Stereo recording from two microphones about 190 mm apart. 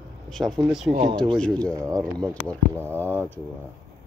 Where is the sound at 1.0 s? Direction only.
25° right (ahead or behind).